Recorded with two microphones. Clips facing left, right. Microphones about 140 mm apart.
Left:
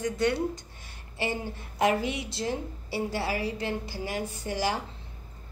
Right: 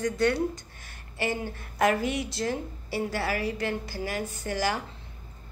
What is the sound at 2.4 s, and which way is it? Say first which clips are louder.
A woman's voice: right 1 dB; 20° left (ahead or behind).